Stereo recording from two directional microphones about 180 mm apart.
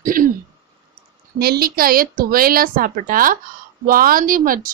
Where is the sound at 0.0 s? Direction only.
50° right (ahead or behind).